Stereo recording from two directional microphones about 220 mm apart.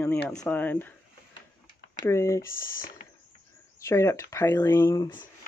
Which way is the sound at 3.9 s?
10° left (ahead or behind).